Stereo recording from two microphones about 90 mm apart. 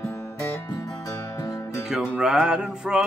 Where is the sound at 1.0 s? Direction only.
40° left (ahead or behind).